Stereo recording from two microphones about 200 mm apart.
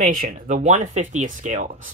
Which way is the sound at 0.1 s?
40° right (ahead or behind).